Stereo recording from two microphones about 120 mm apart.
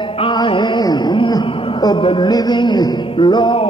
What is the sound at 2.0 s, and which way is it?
Music, 45° left (ahead or behind).